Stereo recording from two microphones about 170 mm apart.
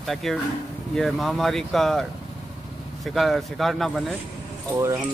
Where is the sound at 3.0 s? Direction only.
Centre (ahead or behind).